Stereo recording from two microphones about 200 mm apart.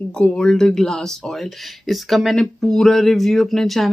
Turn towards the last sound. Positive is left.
turn(degrees=0)  # may be behind; listen again after turning